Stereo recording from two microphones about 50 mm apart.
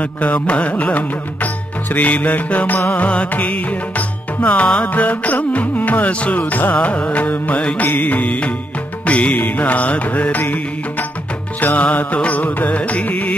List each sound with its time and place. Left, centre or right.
0.0 s music: left